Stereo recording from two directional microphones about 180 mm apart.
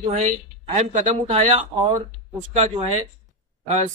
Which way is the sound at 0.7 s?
35° right (ahead or behind).